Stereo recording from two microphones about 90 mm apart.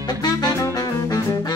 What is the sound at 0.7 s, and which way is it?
Saxophone, 40° left (ahead or behind).